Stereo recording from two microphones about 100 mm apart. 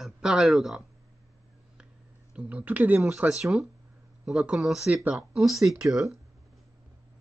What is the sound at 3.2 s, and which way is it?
Speech, 5° right (ahead or behind).